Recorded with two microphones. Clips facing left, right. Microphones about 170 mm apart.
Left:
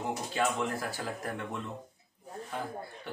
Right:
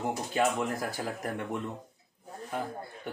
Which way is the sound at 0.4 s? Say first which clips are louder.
Right 3 dB; 15° right (ahead or behind).